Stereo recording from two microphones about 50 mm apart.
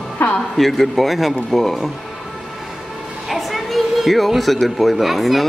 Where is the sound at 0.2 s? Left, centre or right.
Left.